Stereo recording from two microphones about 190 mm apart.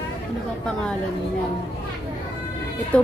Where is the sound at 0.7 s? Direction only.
5° left (ahead or behind).